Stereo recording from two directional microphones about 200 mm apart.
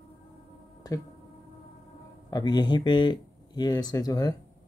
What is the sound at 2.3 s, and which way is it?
Speech, 20° left (ahead or behind).